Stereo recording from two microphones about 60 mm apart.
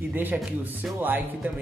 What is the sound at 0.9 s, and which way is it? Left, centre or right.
Speech, right.